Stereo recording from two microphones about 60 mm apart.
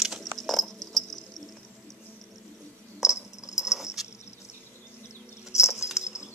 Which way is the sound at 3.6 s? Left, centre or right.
Centre.